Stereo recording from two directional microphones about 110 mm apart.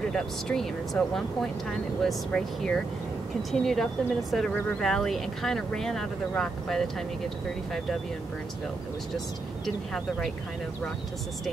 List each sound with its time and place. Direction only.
0.1 s speech: 5° left (ahead or behind)